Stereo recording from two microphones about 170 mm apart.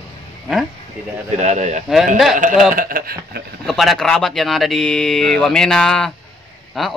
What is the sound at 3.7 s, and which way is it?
Speech, centre (ahead or behind).